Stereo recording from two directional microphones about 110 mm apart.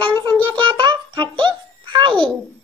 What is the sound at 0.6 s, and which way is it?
Music, 50° right (ahead or behind).